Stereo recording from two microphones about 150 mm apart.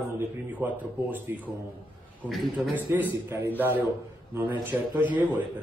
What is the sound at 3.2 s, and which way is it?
A man's voice, 15° right (ahead or behind).